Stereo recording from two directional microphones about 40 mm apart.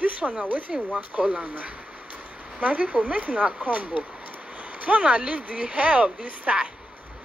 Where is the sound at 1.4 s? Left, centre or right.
Right.